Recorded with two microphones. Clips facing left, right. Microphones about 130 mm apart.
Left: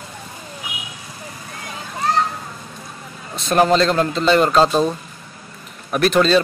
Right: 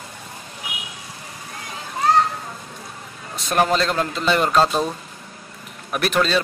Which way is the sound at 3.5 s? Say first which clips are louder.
Left 4 dB; 5° right (ahead or behind).